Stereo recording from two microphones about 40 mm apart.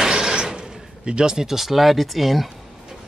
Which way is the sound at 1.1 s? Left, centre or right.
Right.